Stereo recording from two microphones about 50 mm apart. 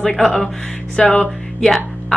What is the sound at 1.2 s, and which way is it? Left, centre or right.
Music, centre.